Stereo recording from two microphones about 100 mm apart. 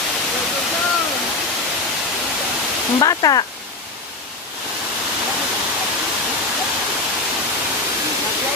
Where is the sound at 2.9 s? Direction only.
40° left (ahead or behind).